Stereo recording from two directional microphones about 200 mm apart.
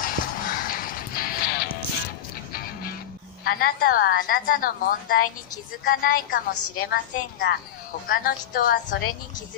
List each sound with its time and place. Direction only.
0.0 s music: 45° left (ahead or behind)
3.4 s a woman's voice: 50° left (ahead or behind)